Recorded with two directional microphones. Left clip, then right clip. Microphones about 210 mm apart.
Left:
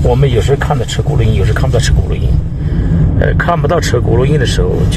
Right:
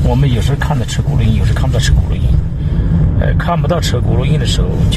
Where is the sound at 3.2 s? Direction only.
20° left (ahead or behind).